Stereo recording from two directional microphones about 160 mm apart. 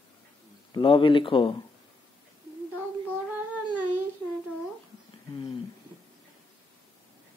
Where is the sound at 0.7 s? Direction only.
30° left (ahead or behind).